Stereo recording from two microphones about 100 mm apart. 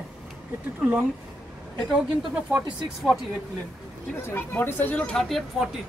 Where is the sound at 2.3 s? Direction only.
20° right (ahead or behind).